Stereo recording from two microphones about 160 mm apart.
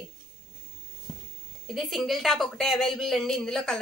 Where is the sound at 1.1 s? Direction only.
30° left (ahead or behind).